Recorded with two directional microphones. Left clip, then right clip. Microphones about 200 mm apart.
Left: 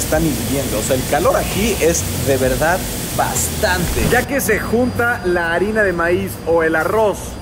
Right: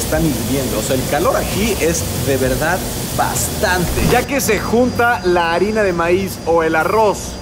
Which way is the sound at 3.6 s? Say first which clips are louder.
Right 1 dB; 10° right (ahead or behind).